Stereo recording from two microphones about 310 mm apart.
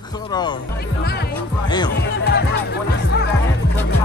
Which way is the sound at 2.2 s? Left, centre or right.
Left.